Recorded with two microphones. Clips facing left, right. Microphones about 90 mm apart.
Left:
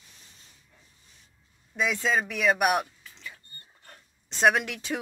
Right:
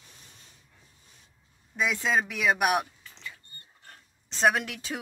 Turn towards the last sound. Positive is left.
turn(degrees=0)  # may be behind; listen again after turning